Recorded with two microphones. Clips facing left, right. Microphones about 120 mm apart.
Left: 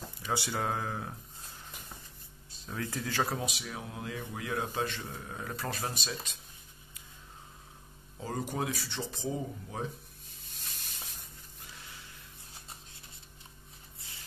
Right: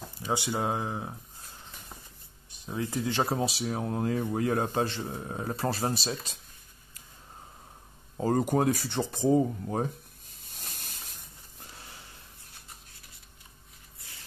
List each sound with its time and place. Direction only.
0.3 s speech: 20° right (ahead or behind)
2.5 s speech: 20° right (ahead or behind)
8.2 s speech: 50° right (ahead or behind)
10.4 s snake: 45° right (ahead or behind)
11.7 s snort: 40° right (ahead or behind)